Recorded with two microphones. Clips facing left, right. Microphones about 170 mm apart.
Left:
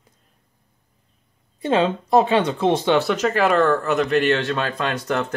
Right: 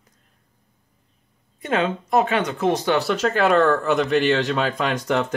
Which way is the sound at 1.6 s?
30° left (ahead or behind).